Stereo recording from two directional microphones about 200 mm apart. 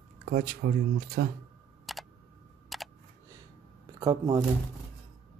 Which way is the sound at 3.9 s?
20° right (ahead or behind).